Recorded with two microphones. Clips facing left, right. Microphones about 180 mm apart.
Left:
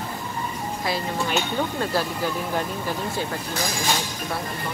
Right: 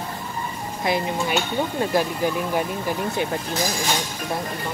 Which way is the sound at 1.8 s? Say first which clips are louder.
Right 3 dB; 15° right (ahead or behind).